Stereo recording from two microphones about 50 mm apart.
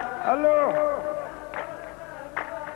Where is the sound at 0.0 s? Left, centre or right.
Centre.